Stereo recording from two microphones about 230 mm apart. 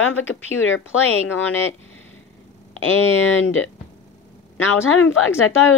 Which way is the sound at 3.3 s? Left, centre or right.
Left.